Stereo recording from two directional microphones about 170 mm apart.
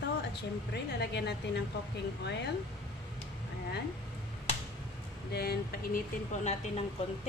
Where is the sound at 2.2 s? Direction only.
90° left.